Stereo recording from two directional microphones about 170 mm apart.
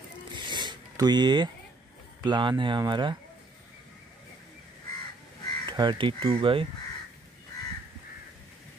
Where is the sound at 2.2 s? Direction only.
25° right (ahead or behind).